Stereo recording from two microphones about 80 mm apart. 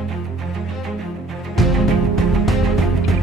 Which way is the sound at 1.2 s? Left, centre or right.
Centre.